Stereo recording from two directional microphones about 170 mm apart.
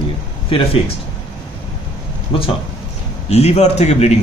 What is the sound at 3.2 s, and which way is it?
Speech, 40° left (ahead or behind).